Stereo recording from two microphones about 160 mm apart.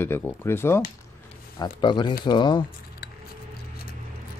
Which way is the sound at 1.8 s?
30° left (ahead or behind).